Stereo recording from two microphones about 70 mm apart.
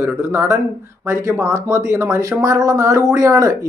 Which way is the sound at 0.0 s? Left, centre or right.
Right.